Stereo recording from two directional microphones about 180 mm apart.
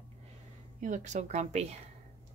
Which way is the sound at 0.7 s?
45° right (ahead or behind).